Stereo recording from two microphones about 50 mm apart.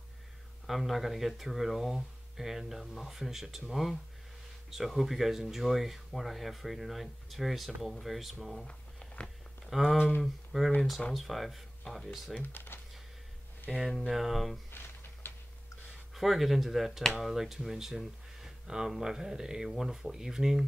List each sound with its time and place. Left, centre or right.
0.7 s speech: centre
8.6 s a sound: centre
9.7 s speech: centre
12.5 s typing: left
13.7 s speech: centre
15.2 s a sound: left
16.2 s speech: centre